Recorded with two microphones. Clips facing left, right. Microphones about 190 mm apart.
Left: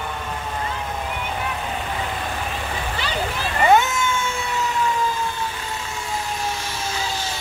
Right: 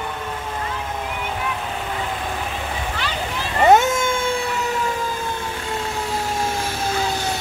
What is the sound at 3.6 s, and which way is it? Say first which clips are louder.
Vehicle: right 3 dB; 45° right (ahead or behind).